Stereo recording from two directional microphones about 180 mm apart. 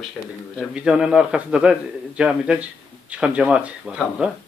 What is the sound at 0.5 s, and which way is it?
A man's voice, 5° right (ahead or behind).